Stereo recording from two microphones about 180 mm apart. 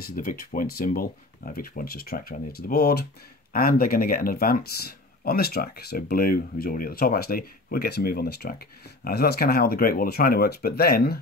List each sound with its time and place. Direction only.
0.0 s speech: 50° left (ahead or behind)